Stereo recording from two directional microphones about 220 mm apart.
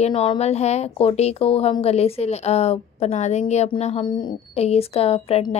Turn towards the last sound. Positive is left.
turn(degrees=25)  # may be behind; listen again after turning